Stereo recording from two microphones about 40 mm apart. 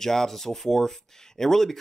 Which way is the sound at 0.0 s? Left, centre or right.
Centre.